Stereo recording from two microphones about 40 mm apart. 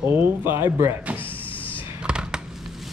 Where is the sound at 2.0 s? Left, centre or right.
Right.